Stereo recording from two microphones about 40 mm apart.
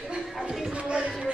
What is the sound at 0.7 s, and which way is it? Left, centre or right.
Music, right.